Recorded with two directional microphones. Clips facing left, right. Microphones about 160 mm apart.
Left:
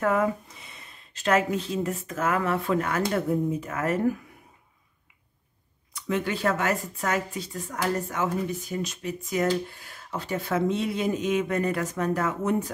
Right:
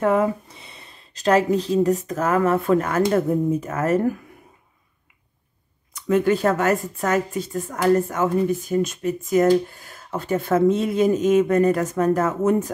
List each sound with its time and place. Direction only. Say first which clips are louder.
0.0 s speech: right 5 dB; 30° right (ahead or behind)
6.0 s speech: right 8 dB; 45° right (ahead or behind)